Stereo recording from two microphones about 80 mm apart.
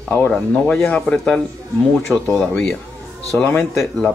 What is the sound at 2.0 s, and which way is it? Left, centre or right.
Speech, left.